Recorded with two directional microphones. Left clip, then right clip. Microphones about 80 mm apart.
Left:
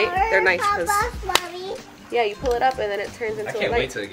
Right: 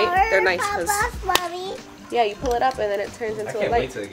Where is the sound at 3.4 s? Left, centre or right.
Left.